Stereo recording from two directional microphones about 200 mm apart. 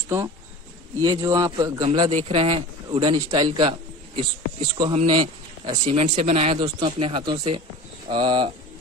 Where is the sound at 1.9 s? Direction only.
30° right (ahead or behind).